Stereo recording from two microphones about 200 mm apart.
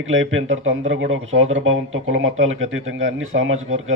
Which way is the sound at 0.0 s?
75° right (ahead or behind).